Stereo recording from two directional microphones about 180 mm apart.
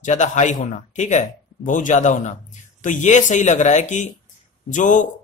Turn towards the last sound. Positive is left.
turn(degrees=45)  # may be behind; listen again after turning